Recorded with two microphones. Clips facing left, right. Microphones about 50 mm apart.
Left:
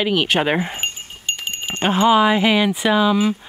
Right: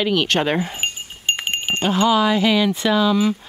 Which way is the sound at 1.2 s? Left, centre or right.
Right.